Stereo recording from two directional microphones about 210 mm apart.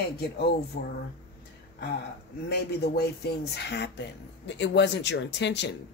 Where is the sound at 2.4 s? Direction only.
50° left (ahead or behind).